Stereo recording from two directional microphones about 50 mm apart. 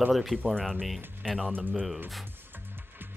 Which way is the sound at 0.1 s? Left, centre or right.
Centre.